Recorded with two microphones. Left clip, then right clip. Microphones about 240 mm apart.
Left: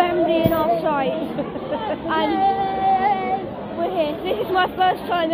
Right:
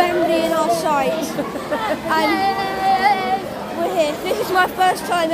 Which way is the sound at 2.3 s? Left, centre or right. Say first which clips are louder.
Even; left.